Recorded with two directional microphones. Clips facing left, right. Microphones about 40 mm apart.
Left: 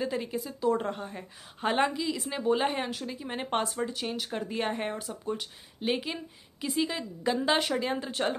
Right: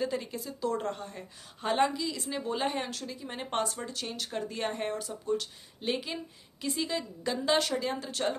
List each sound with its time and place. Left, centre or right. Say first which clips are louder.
0.0 s a woman's voice: left 1 dB; centre